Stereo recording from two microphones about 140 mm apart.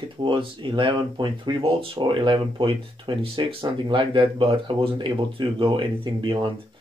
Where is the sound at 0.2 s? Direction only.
35° right (ahead or behind).